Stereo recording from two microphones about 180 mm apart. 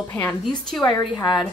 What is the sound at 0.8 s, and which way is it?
Speech, 20° left (ahead or behind).